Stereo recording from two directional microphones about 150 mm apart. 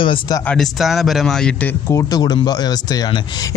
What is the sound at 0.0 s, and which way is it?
Speech, 35° left (ahead or behind).